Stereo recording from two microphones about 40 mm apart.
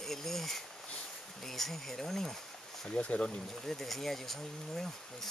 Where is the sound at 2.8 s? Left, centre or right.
Left.